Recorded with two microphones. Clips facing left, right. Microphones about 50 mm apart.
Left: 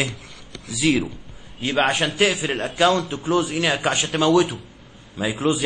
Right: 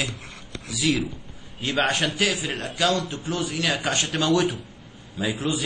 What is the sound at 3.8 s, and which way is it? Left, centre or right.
Speech, centre.